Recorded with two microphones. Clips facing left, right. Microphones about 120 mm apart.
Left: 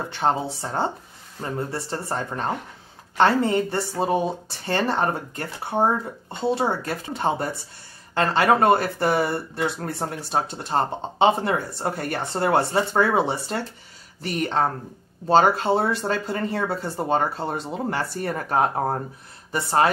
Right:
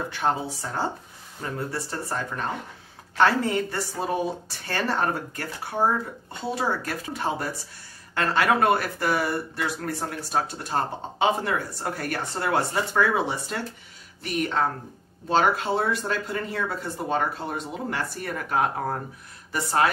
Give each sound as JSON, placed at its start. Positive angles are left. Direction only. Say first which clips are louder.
{"t": 0.1, "sound": "speech", "louder": "left 5 dB", "side_deg": 30}